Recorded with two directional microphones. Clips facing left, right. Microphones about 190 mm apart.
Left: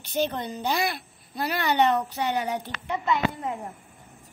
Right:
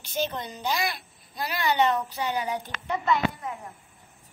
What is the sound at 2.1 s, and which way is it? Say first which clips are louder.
Speech: left 2 dB; 70° left (ahead or behind).